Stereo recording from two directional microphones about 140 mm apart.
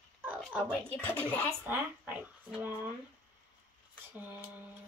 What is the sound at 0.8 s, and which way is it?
Speech, 10° left (ahead or behind).